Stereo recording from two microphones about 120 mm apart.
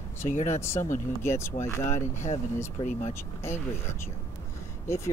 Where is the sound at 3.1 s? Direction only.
20° left (ahead or behind).